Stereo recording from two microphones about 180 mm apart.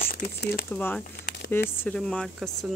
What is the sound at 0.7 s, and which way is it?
Speech, 10° left (ahead or behind).